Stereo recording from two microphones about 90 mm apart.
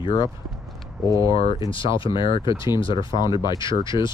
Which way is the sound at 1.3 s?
90° left.